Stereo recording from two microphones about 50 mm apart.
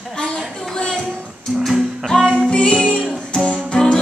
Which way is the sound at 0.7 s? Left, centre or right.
Centre.